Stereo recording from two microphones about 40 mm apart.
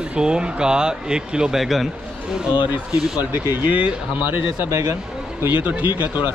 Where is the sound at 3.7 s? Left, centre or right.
Right.